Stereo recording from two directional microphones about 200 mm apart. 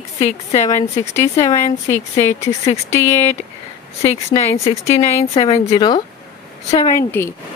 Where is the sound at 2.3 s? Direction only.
35° left (ahead or behind).